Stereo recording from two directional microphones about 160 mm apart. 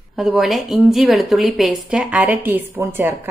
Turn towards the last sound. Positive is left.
turn(degrees=-15)  # may be behind; listen again after turning